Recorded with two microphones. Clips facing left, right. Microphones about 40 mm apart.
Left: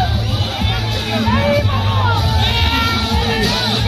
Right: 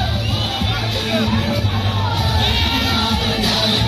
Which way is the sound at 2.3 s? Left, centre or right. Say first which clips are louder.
Left 1 dB; left.